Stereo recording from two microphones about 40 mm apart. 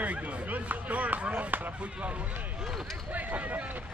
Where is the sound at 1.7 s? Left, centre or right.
Right.